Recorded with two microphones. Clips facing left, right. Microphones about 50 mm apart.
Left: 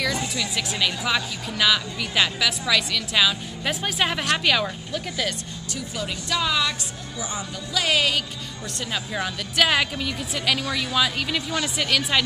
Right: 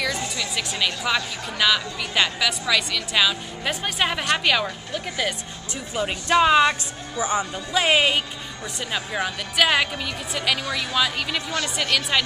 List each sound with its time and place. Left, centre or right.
0.4 s a woman's voice: centre
5.8 s speech: right
8.7 s a woman's voice: centre